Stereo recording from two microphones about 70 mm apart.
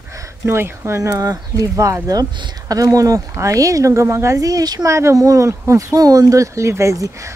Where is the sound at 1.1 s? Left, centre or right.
Right.